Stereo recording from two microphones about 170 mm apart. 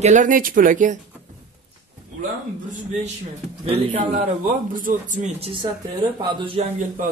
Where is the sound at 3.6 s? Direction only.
35° right (ahead or behind).